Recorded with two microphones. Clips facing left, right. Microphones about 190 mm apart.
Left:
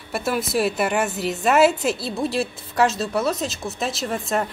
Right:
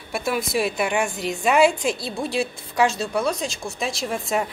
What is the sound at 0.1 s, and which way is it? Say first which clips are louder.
A woman's voice: left 1 dB; centre (ahead or behind).